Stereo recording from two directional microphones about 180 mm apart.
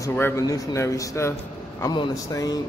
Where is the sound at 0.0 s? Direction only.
15° left (ahead or behind).